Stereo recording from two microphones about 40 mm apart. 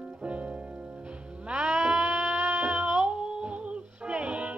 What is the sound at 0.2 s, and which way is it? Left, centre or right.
Music, right.